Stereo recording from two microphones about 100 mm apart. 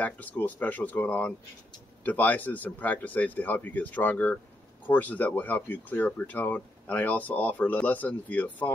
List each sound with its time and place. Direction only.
0.0 s speech: 15° left (ahead or behind)